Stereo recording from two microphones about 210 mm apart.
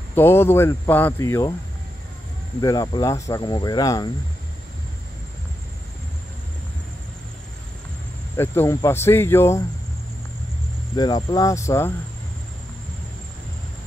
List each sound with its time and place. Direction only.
0.1 s speech: 10° left (ahead or behind)
2.6 s speech: 20° left (ahead or behind)
8.4 s speech: 10° left (ahead or behind)
11.0 s speech: 20° left (ahead or behind)